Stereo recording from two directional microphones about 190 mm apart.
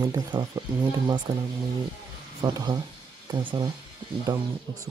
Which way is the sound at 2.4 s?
20° right (ahead or behind).